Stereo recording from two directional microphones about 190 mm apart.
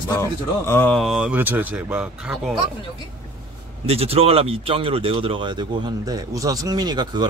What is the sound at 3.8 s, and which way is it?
Speech, 30° right (ahead or behind).